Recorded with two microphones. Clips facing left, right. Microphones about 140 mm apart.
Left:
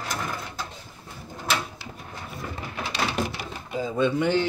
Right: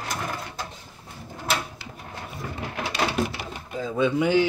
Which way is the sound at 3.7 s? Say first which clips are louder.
Even; centre (ahead or behind).